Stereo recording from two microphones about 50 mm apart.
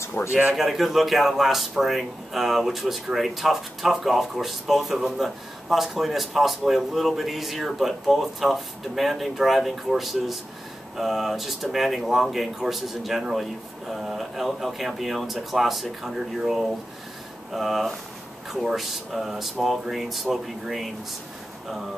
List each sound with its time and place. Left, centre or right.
0.3 s a man's voice: right
0.6 s speech: centre